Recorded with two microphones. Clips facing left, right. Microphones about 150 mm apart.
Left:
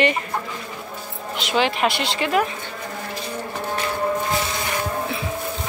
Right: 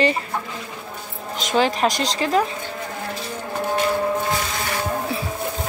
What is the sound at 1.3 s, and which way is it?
Speech, 40° right (ahead or behind).